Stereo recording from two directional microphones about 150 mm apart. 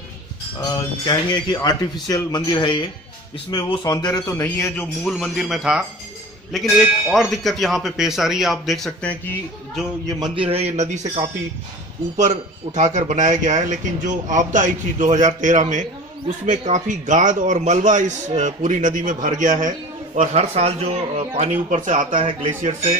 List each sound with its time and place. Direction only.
0.7 s speech: 25° left (ahead or behind)
5.0 s speech: centre (ahead or behind)
10.0 s a man's voice: 25° right (ahead or behind); by 19.7 s 55° right (ahead or behind)
20.2 s speech: 45° right (ahead or behind)